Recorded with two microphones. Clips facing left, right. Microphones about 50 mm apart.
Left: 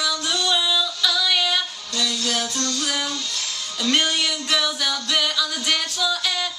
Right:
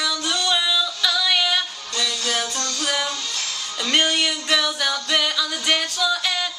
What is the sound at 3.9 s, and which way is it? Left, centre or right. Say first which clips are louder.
Music: right 2 dB; centre.